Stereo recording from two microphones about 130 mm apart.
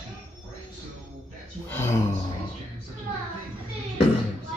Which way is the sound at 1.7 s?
20° left (ahead or behind).